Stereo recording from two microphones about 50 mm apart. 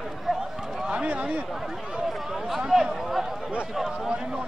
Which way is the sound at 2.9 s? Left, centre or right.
Centre.